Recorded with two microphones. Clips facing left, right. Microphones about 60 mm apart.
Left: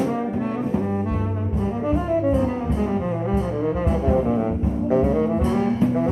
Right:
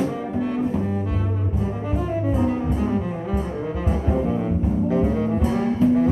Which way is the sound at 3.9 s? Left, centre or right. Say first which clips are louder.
Left 2 dB; centre.